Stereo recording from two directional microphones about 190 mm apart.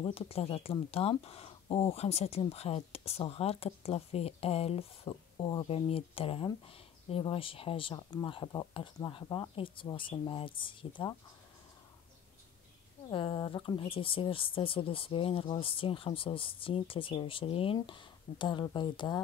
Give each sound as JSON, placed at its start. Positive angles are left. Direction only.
{"t": 0.0, "sound": "speech", "side_deg": 30}
{"t": 13.1, "sound": "speech", "side_deg": 25}